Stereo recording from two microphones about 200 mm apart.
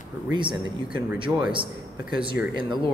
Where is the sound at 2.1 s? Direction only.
25° right (ahead or behind).